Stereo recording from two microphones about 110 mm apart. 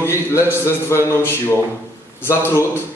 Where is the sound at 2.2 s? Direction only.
20° left (ahead or behind).